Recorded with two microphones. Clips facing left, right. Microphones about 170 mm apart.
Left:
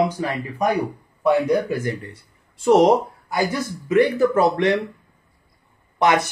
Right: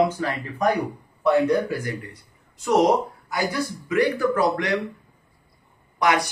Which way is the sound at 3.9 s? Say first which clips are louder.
Left 5 dB; 25° left (ahead or behind).